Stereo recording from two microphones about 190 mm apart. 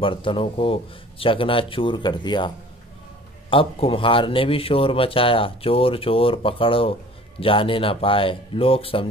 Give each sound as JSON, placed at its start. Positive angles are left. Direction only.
{"t": 0.0, "sound": "speech", "side_deg": 25}